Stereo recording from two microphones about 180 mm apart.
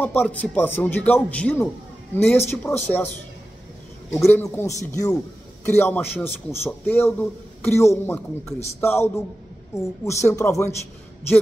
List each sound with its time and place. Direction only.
0.0 s a man's voice: 10° left (ahead or behind)
4.3 s a man's voice: 15° left (ahead or behind)